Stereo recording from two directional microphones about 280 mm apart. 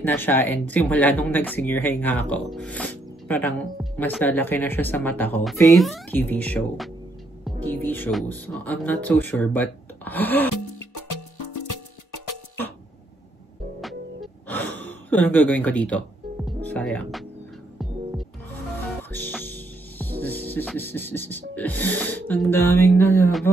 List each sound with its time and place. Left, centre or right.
0.0 s speech: centre
10.5 s music: left
13.7 s music: centre
16.6 s speech: centre
19.1 s music: centre
21.5 s speech: centre